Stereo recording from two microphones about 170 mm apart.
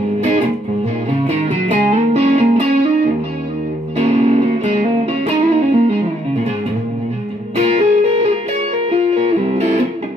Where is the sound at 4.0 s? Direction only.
40° right (ahead or behind).